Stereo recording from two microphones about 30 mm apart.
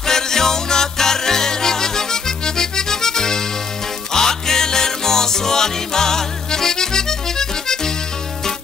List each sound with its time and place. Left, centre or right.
0.0 s music: centre